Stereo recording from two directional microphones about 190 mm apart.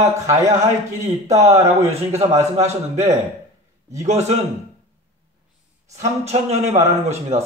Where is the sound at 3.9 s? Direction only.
35° right (ahead or behind).